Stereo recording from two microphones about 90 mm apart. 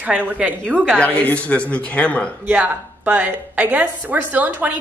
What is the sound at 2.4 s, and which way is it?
A woman's voice, 20° right (ahead or behind).